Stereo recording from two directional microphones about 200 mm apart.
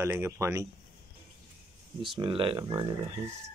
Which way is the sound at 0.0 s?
15° right (ahead or behind).